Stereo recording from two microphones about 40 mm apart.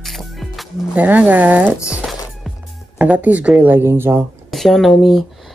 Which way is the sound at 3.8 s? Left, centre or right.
Right.